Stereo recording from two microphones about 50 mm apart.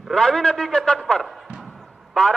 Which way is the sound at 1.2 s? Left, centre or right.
Centre.